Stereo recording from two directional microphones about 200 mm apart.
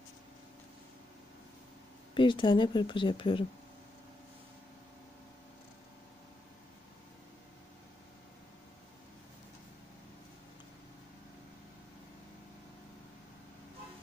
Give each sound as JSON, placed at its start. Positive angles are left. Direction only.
{"t": 2.1, "sound": "speech", "side_deg": 25}